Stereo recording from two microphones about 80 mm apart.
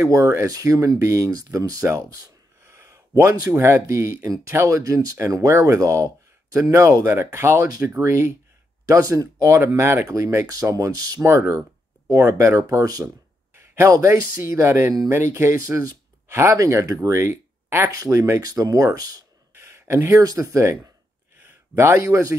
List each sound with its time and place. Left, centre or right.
0.0 s speech: right
1.9 s a sound: right
3.5 s speech: right
8.8 s speech: right
9.6 s speech: right
10.0 s speech: right
11.2 s speech: right
13.6 s a sound: right
13.9 s speech: right
16.5 s speech: right
17.2 s a sound: right
17.9 s speech: right
21.4 s a sound: right
22.0 s speech: right